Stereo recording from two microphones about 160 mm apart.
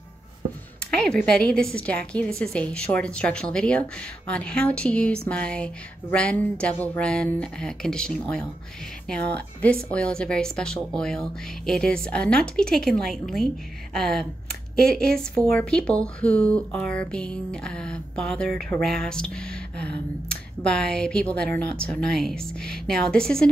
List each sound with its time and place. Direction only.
0.9 s a woman's voice: 5° left (ahead or behind)